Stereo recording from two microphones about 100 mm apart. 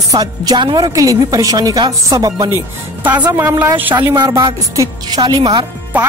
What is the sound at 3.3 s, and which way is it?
Speech, 30° right (ahead or behind).